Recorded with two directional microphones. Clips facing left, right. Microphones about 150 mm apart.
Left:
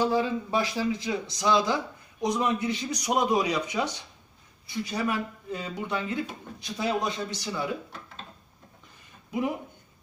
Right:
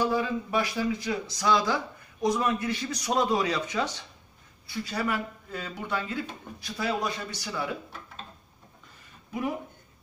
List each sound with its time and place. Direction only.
0.0 s a man's voice: 25° left (ahead or behind)